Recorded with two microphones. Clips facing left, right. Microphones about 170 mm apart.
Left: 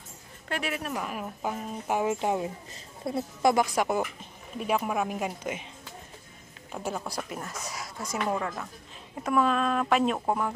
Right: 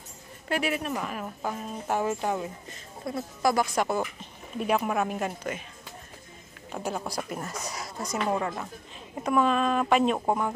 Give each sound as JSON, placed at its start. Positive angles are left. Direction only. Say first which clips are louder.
{"t": 0.5, "sound": "a woman's voice", "louder": "right 4 dB", "side_deg": -5}
{"t": 3.7, "sound": "a woman's voice", "louder": "even", "side_deg": 10}
{"t": 6.7, "sound": "speech", "louder": "right 1 dB", "side_deg": 0}
{"t": 8.3, "sound": "speech", "louder": "right 2 dB", "side_deg": -10}